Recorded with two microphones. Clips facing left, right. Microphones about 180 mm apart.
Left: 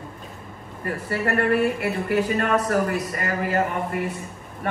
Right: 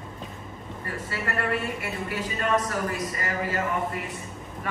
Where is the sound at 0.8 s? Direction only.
60° left (ahead or behind).